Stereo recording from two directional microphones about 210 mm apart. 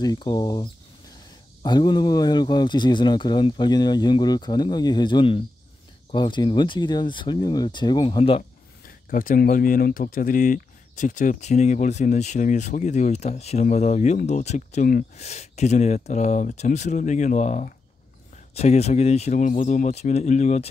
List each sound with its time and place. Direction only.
0.0 s speech: 20° left (ahead or behind)
8.8 s speech: 40° left (ahead or behind)